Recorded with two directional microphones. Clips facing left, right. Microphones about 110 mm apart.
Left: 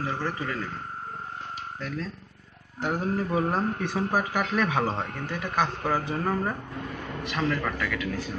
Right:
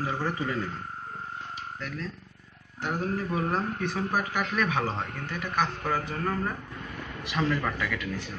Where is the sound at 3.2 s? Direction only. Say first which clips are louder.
Left 3 dB; 15° left (ahead or behind).